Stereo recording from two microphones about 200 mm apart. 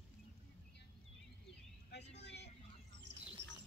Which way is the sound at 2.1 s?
60° left (ahead or behind).